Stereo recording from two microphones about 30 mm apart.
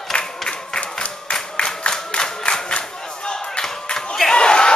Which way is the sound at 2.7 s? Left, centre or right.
Left.